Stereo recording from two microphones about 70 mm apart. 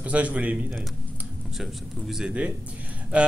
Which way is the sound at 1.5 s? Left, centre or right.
Centre.